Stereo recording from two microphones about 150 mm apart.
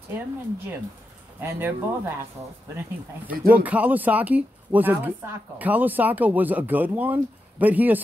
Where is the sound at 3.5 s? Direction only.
10° right (ahead or behind).